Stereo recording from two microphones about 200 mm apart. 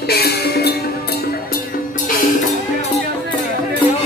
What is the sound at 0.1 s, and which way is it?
Music, 50° left (ahead or behind).